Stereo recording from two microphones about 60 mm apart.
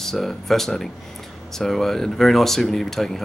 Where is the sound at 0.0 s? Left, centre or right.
Centre.